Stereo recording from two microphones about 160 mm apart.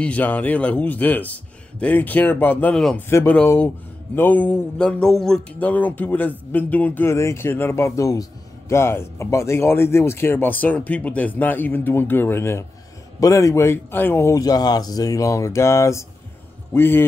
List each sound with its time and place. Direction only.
0.0 s speech: 10° left (ahead or behind)